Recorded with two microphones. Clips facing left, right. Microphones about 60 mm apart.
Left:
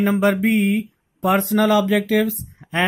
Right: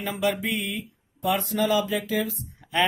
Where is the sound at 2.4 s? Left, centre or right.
Left.